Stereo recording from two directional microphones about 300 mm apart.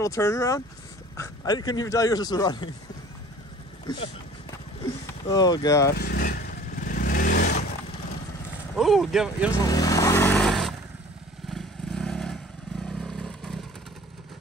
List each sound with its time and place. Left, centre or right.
0.0 s a man's voice: centre
3.8 s vehicle: centre
5.3 s a man's voice: centre
5.9 s speech: left
6.8 s vehicle: left
8.7 s speech: centre
9.7 s vehicle: centre